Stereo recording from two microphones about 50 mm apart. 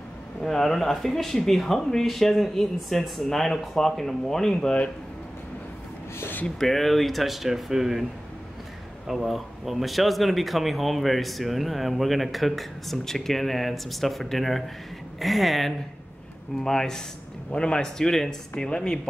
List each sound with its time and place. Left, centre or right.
0.4 s speech: centre
6.1 s a sound: left
6.4 s a man's voice: centre
16.6 s speech: centre